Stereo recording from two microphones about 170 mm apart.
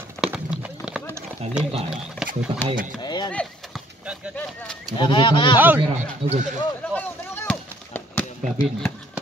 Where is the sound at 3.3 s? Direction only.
Centre (ahead or behind).